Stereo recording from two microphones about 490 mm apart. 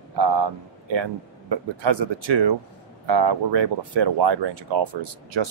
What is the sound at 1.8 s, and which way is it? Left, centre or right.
Speech, right.